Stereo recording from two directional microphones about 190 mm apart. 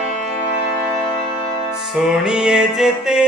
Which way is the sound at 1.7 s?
Centre (ahead or behind).